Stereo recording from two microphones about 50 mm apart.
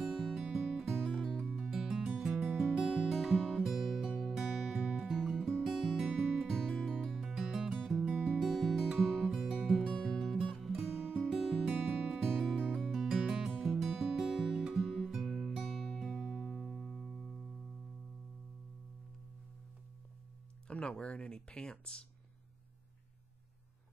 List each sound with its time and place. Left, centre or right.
0.0 s music: centre
8.2 s music: centre
9.9 s music: centre
10.4 s music: centre
20.6 s a sound: centre